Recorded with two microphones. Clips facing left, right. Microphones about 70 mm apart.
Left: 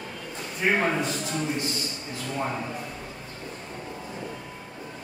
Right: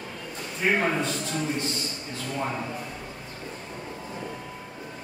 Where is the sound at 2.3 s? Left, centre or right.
Centre.